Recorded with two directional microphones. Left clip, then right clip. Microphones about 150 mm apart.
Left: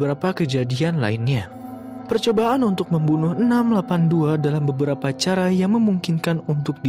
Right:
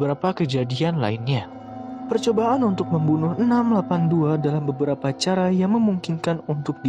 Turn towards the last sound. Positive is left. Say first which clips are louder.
# left 1 dB
turn(degrees=35)  # may be behind; listen again after turning